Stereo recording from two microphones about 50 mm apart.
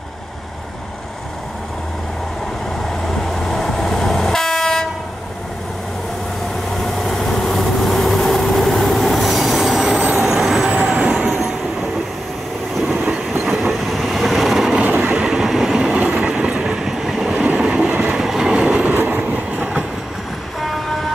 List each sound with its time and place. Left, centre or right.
3.1 s train: centre
6.8 s vehicle: centre
10.2 s train: centre
11.0 s train: right
13.1 s train: centre
14.8 s vehicle: right
15.2 s train: centre
16.0 s train: right; by 17.3 s centre
17.3 s train: right
18.9 s train: right